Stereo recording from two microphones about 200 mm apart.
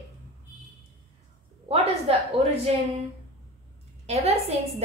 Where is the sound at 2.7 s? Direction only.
30° right (ahead or behind).